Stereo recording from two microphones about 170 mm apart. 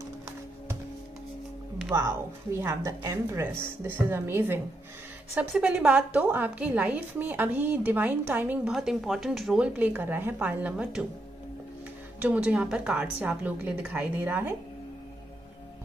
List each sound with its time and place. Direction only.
1.9 s a woman's voice: 15° right (ahead or behind)
12.2 s a woman's voice: 10° right (ahead or behind)